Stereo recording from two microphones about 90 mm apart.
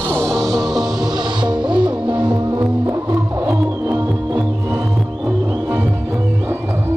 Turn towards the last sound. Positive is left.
turn(degrees=-20)  # may be behind; listen again after turning